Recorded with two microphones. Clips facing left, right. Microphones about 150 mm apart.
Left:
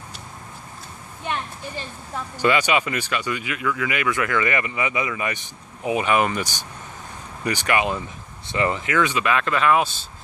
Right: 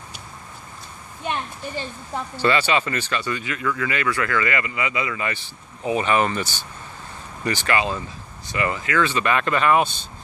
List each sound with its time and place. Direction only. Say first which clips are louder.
1.3 s a child's voice: right 1 dB; 25° right (ahead or behind)
2.3 s speech: left 1 dB; 15° left (ahead or behind)
9.2 s speech: even; centre (ahead or behind)